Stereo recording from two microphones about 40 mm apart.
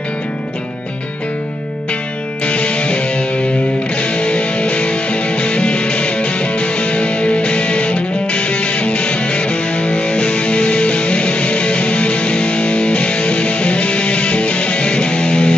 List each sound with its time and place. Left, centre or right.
2.4 s music: left